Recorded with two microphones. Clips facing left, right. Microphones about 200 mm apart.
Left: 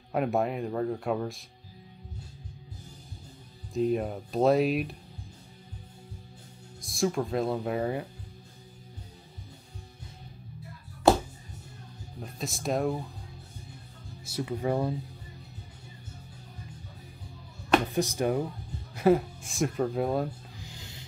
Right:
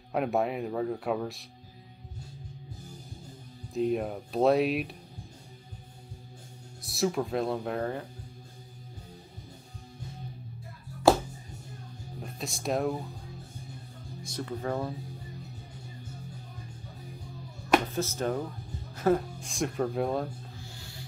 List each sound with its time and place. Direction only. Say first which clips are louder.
0.1 s speech: left 1 dB; centre (ahead or behind)
3.7 s speech: left 1 dB; centre (ahead or behind)
6.8 s speech: even; 5° right (ahead or behind)
12.2 s speech: left 2 dB; centre (ahead or behind)
14.2 s speech: left 3 dB; 10° left (ahead or behind)
17.9 s speech: left 3 dB; 15° left (ahead or behind)
20.6 s music: even; 20° left (ahead or behind)